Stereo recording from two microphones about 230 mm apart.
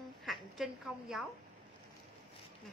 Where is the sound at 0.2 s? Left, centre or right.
Centre.